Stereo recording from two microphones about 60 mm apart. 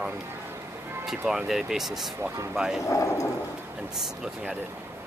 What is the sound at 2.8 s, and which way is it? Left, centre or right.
Speech, left.